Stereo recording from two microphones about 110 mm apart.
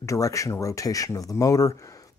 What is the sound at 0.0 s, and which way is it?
Speech, 30° left (ahead or behind).